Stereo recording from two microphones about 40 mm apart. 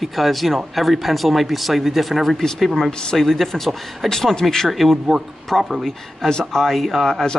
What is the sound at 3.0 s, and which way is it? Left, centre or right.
Speech, centre.